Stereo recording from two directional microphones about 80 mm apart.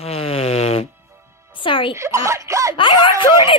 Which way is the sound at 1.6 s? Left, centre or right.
Left.